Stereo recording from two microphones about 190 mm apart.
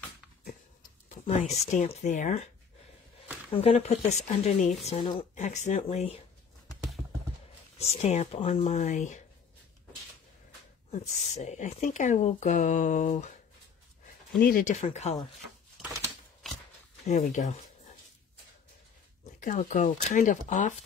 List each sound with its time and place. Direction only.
1.0 s speech: 35° left (ahead or behind)
3.5 s speech: 35° left (ahead or behind)
7.8 s speech: 35° left (ahead or behind)
10.9 s speech: 35° left (ahead or behind)
14.4 s speech: 45° left (ahead or behind)
15.8 s typewriter: 15° right (ahead or behind)
17.0 s speech: 40° left (ahead or behind)
19.4 s speech: 40° left (ahead or behind)